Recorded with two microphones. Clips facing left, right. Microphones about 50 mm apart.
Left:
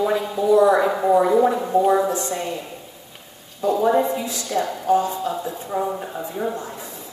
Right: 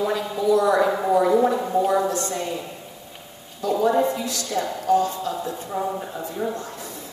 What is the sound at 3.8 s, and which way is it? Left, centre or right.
Speech, centre.